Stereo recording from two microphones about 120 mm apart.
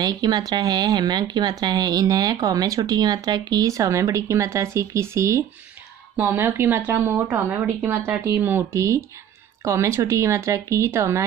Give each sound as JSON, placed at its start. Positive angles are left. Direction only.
{"t": 0.0, "sound": "a woman's voice", "side_deg": -35}